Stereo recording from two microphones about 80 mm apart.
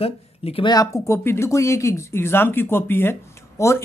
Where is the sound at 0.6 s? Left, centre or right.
Left.